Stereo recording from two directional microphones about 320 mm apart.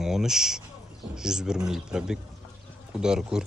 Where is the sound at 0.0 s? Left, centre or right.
Centre.